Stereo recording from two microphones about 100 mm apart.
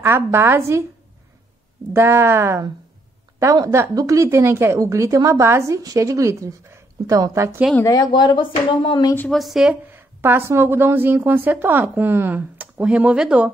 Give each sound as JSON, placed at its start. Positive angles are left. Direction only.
{"t": 0.0, "sound": "a woman's voice", "side_deg": -25}
{"t": 2.0, "sound": "a woman's voice", "side_deg": -25}
{"t": 7.9, "sound": "speech", "side_deg": 45}
{"t": 9.3, "sound": "speech", "side_deg": 0}
{"t": 9.8, "sound": "a woman's voice", "side_deg": -20}